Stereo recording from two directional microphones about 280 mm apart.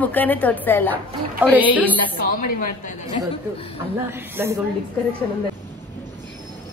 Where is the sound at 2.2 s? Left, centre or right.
Left.